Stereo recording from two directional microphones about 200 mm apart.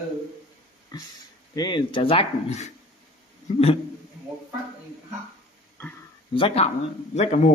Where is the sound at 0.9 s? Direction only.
20° left (ahead or behind).